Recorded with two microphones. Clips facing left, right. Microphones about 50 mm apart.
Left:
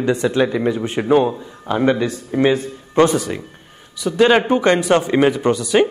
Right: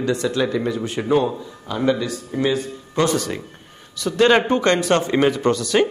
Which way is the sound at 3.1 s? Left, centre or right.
Centre.